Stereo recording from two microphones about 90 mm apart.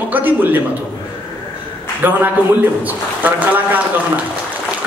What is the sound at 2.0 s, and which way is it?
A man's voice, 25° right (ahead or behind).